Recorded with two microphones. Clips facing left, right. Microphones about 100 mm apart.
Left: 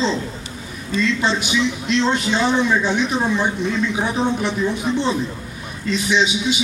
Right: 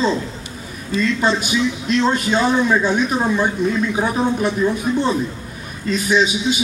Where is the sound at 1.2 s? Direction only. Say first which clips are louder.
Right 2 dB; 45° right (ahead or behind).